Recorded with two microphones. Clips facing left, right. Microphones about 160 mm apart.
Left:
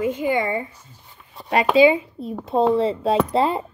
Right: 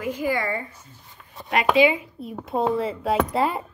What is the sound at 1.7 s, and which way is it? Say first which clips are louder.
A woman's voice: left 4 dB; 30° left (ahead or behind).